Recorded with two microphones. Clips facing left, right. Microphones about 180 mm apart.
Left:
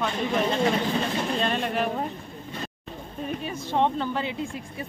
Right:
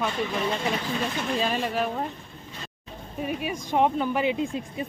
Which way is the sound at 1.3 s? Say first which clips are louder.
Right 2 dB; 5° right (ahead or behind).